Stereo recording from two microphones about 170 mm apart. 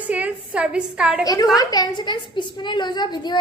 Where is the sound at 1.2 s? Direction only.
20° left (ahead or behind).